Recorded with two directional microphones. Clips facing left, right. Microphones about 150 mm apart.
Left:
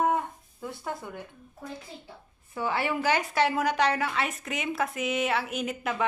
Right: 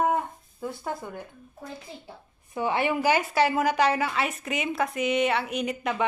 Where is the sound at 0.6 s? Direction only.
5° right (ahead or behind).